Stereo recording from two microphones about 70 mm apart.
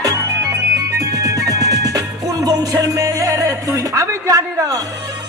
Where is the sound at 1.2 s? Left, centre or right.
Right.